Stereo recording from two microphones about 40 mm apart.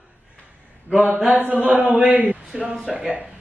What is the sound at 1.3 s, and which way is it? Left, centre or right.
Mantra, right.